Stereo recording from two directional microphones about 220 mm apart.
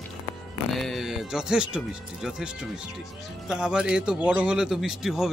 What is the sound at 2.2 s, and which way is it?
Speech, 5° right (ahead or behind).